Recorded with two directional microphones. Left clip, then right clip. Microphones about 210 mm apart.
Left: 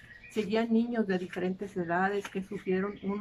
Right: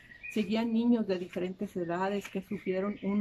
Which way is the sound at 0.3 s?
15° right (ahead or behind).